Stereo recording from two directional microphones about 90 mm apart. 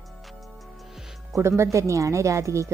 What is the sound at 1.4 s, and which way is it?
Speech, 30° right (ahead or behind).